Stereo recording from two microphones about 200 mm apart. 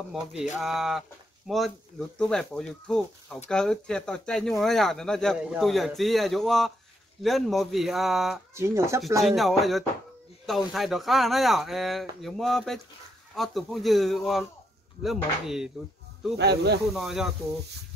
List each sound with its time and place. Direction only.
0.1 s speech: 5° right (ahead or behind)
8.5 s speech: 15° right (ahead or behind)
9.2 s speech: centre (ahead or behind)
16.3 s speech: 55° right (ahead or behind)
16.9 s speech: centre (ahead or behind)